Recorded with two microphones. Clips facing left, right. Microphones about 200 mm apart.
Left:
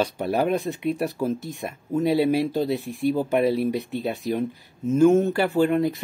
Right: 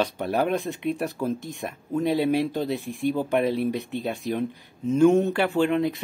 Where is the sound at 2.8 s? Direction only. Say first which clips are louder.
Left 1 dB; 40° left (ahead or behind).